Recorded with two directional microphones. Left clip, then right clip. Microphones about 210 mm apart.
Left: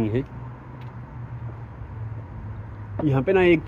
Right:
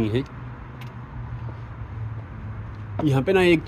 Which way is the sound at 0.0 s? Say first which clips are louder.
Right 1 dB; 15° right (ahead or behind).